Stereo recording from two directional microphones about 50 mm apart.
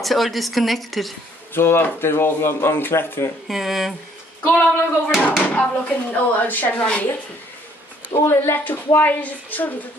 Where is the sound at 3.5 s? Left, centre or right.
Centre.